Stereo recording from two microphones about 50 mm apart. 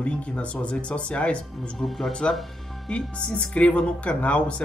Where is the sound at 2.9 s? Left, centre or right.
Left.